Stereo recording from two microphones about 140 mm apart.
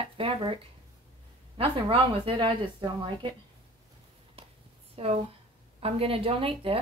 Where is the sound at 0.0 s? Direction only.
40° right (ahead or behind).